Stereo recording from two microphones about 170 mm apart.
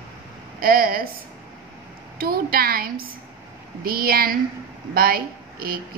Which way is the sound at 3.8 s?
60° right (ahead or behind).